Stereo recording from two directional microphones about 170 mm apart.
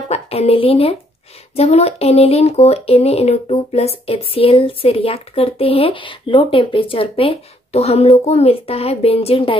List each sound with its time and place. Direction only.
0.1 s speech: 35° left (ahead or behind)